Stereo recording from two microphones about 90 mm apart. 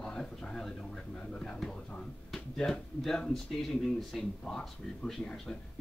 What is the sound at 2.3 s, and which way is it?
Speech, 5° left (ahead or behind).